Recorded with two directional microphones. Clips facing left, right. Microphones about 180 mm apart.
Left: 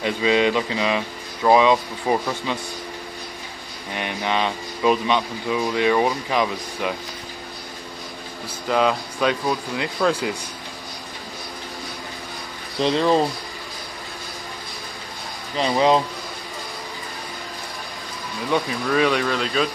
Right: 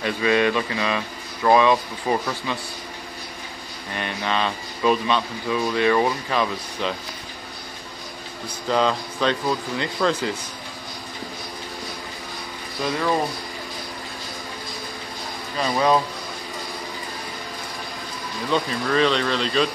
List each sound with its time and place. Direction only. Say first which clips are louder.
0.0 s speech: left 1 dB; 15° left (ahead or behind)
3.9 s speech: left 1 dB; 15° left (ahead or behind)
8.6 s speech: left 1 dB; 5° left (ahead or behind)
12.8 s speech: left 5 dB; 25° left (ahead or behind)
15.5 s speech: left 2 dB; 20° left (ahead or behind)
18.5 s speech: left 1 dB; 10° left (ahead or behind)